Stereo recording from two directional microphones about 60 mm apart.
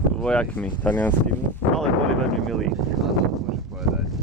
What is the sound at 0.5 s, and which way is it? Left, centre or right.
Speech, left.